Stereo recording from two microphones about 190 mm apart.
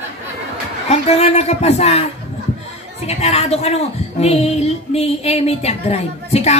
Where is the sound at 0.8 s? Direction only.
35° left (ahead or behind).